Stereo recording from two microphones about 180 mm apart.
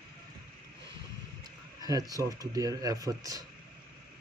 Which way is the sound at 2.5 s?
20° right (ahead or behind).